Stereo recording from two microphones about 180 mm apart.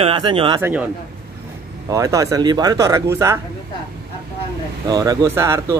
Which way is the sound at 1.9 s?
20° right (ahead or behind).